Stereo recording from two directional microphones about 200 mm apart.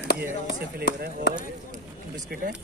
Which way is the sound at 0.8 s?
50° right (ahead or behind).